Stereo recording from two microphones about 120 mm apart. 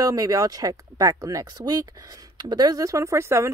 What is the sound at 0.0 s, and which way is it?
Speech, 30° right (ahead or behind).